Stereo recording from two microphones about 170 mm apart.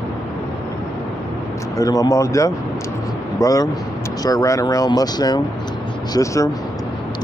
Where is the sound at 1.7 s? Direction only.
20° left (ahead or behind).